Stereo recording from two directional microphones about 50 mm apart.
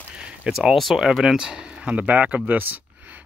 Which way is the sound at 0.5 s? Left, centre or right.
Centre.